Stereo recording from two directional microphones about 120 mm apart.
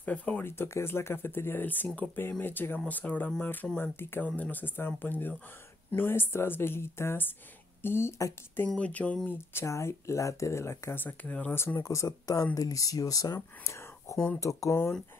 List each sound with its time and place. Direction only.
0.0 s speech: 10° left (ahead or behind)
9.5 s speech: 20° left (ahead or behind)